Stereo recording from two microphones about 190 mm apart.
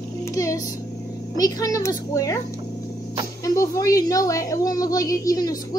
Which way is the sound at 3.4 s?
15° left (ahead or behind).